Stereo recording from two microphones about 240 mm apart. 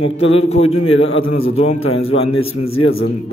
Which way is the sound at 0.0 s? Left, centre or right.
Left.